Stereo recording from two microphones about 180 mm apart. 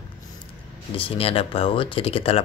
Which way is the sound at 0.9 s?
30° left (ahead or behind).